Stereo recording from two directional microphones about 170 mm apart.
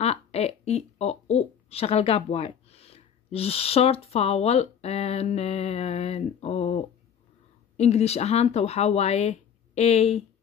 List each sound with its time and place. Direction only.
0.0 s speech: 40° left (ahead or behind)